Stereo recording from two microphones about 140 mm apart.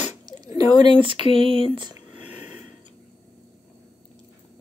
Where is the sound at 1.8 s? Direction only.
30° right (ahead or behind).